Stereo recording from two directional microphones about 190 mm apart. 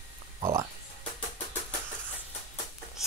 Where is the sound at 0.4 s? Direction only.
20° right (ahead or behind).